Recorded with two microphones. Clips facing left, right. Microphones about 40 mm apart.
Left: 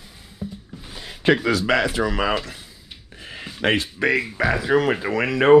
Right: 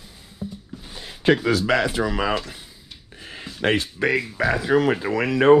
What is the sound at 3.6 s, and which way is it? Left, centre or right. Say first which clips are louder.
Speech: left 1 dB; left.